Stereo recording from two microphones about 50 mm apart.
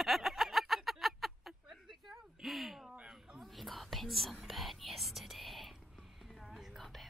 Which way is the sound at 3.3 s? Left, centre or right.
Centre.